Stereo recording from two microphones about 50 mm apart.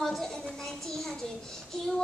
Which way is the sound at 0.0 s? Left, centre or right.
Centre.